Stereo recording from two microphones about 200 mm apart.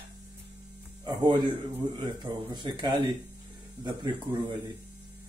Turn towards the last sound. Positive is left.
turn(degrees=-20)  # may be behind; listen again after turning